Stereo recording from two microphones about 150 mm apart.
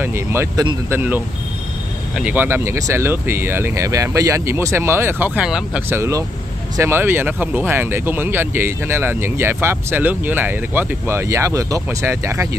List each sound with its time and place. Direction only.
0.0 s speech: 15° right (ahead or behind)